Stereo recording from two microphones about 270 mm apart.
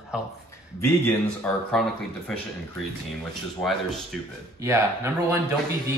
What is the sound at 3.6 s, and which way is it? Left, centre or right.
Speech, centre.